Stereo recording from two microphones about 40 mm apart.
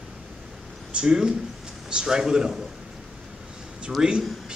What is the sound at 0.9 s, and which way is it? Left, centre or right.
A man's voice, centre.